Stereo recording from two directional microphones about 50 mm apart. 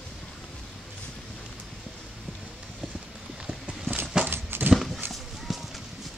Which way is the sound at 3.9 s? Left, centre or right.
Right.